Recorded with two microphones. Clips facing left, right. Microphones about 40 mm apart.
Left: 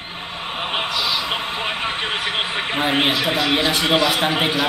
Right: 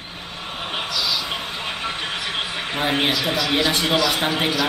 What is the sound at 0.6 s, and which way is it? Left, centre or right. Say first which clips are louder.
Vehicle: left 3 dB; left.